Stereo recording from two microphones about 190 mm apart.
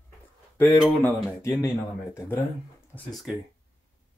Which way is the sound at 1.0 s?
15° left (ahead or behind).